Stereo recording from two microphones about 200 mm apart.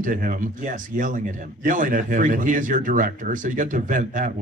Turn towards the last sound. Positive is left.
turn(degrees=-40)  # may be behind; listen again after turning